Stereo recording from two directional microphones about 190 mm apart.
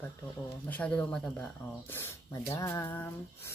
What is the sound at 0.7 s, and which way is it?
Speech, 5° left (ahead or behind).